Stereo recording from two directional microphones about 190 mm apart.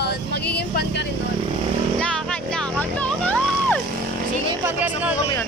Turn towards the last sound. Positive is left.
turn(degrees=5)  # may be behind; listen again after turning